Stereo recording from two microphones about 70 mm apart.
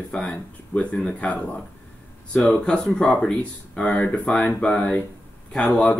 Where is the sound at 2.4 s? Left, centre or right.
Centre.